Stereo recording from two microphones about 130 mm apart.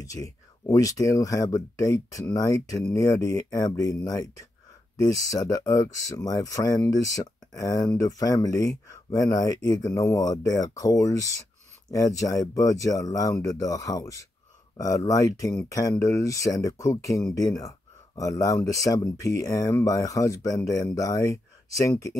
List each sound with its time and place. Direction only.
0.0 s speech: 25° left (ahead or behind)
18.6 s speech: 10° left (ahead or behind)
19.2 s speech: 25° left (ahead or behind)